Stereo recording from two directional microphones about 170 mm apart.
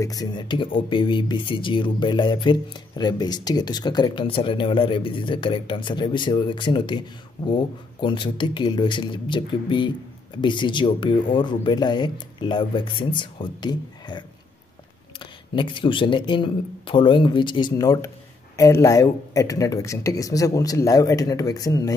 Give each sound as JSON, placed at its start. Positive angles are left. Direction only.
{"t": 0.0, "sound": "speech", "side_deg": 20}